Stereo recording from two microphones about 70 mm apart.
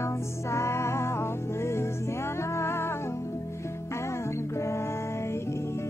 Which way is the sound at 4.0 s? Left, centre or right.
Left.